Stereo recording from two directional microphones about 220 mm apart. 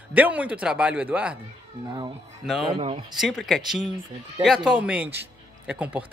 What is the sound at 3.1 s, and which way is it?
A man's voice, centre (ahead or behind).